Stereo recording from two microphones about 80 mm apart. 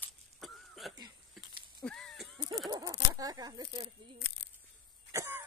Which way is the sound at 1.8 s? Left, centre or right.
Centre.